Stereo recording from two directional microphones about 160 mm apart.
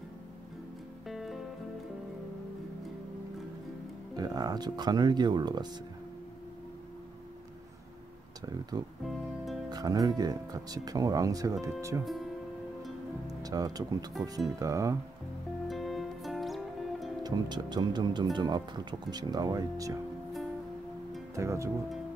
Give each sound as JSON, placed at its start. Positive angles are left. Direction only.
{"t": 1.0, "sound": "music", "side_deg": 0}
{"t": 4.2, "sound": "speech", "side_deg": -25}
{"t": 9.0, "sound": "speech", "side_deg": 0}
{"t": 9.7, "sound": "speech", "side_deg": -25}
{"t": 12.0, "sound": "speech", "side_deg": 0}
{"t": 13.3, "sound": "speech", "side_deg": -25}
{"t": 15.7, "sound": "music", "side_deg": 0}
{"t": 17.2, "sound": "speech", "side_deg": -25}
{"t": 21.4, "sound": "speech", "side_deg": -20}